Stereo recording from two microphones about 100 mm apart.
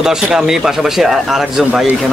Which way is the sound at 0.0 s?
5° right (ahead or behind).